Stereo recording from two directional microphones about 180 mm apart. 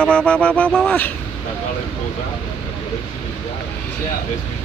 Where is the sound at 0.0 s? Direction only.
5° left (ahead or behind).